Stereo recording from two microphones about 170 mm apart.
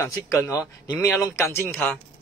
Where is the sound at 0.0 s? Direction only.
15° left (ahead or behind).